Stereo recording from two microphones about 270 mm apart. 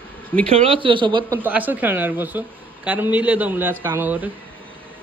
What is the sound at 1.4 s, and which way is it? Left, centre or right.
A woman's voice, centre.